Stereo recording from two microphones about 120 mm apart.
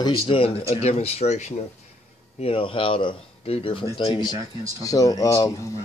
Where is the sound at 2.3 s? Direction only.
50° left (ahead or behind).